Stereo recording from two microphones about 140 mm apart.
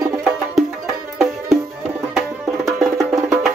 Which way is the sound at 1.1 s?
Centre (ahead or behind).